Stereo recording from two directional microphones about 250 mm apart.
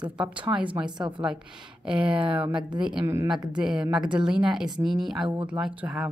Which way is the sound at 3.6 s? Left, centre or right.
Centre.